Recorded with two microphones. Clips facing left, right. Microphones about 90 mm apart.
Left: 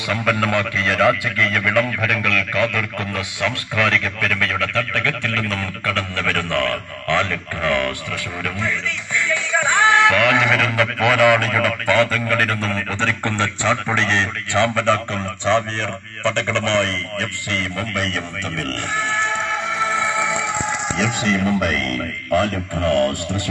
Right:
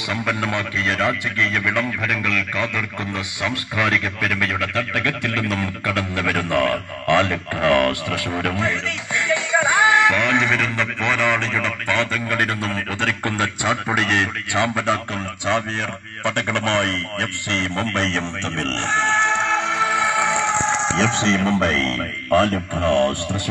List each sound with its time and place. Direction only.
0.1 s a man's voice: 5° right (ahead or behind)
7.8 s a man's voice: 40° right (ahead or behind)
8.5 s music: 20° right (ahead or behind); by 12.2 s centre (ahead or behind)
12.3 s a man's voice: 5° right (ahead or behind)
16.3 s a man's voice: 15° right (ahead or behind)